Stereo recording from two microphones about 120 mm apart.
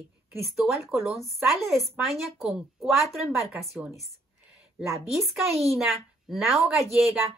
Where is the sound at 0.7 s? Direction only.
Centre (ahead or behind).